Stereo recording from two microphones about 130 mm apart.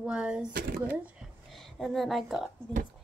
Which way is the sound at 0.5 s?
90° right.